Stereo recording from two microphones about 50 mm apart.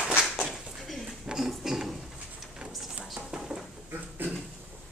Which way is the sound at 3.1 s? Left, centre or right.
Centre.